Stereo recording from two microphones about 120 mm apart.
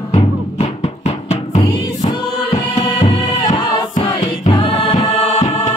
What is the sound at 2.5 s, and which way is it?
Music, 55° left (ahead or behind).